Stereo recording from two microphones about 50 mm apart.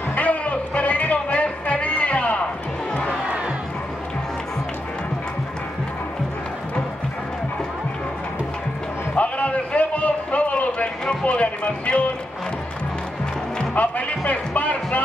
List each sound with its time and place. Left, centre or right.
0.1 s music: left
9.1 s a sound: left
13.7 s music: left